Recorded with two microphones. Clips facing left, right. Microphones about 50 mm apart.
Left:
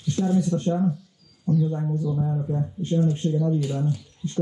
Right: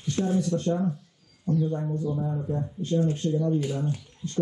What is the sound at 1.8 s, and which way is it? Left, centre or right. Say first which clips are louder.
Speech: left 2 dB; right.